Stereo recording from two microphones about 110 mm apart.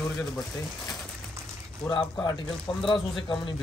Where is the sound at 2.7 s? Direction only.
50° left (ahead or behind).